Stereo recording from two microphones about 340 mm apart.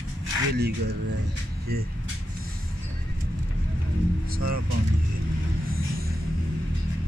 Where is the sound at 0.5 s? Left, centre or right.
Right.